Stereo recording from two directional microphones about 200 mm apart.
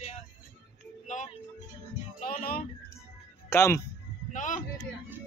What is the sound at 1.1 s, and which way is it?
Music, 35° left (ahead or behind).